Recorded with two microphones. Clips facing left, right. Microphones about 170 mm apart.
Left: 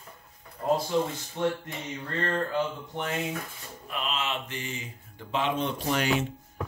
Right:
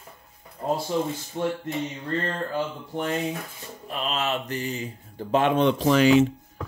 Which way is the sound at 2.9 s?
40° right (ahead or behind).